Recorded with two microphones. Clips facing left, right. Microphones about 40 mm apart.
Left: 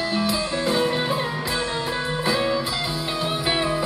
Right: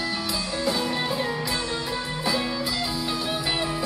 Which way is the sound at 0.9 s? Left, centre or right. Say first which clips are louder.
Left 2 dB; centre.